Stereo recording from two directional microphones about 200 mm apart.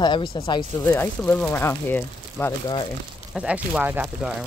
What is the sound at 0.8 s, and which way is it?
Speech, 10° left (ahead or behind).